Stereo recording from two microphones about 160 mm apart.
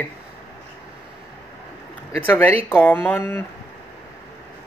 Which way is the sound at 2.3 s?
10° left (ahead or behind).